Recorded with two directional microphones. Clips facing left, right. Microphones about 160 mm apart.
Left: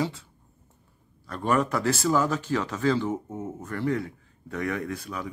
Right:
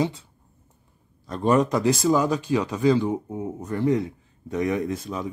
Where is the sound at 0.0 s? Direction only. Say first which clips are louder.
Right 4 dB; 20° right (ahead or behind).